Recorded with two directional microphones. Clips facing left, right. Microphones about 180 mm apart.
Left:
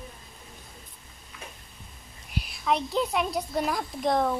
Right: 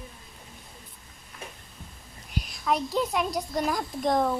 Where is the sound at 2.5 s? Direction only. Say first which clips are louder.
Even; centre (ahead or behind).